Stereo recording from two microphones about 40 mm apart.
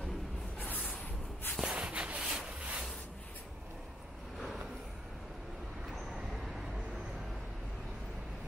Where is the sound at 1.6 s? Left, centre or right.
Right.